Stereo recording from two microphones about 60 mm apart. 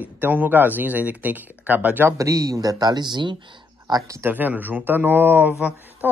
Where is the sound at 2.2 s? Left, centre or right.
Right.